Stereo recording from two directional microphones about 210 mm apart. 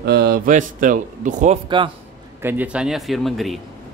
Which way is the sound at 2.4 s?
10° right (ahead or behind).